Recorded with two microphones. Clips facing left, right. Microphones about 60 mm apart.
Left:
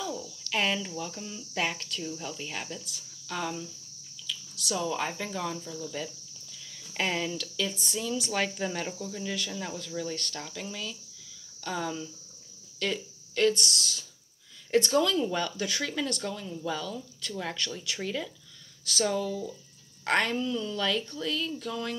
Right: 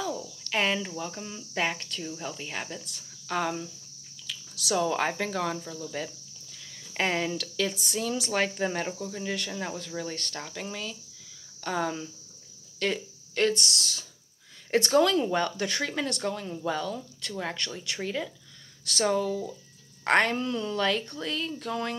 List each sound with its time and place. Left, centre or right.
0.5 s speech: right
2.8 s speech: right
4.3 s a sound: right
4.7 s speech: right
5.6 s speech: right
5.9 s speech: right
7.3 s speech: right
8.5 s speech: right
12.7 s a sound: right
13.5 s speech: right
17.3 s speech: right
19.0 s speech: right